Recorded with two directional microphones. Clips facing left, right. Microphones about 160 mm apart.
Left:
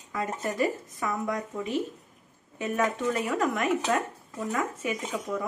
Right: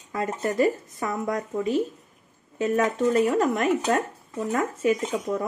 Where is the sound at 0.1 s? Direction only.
35° right (ahead or behind).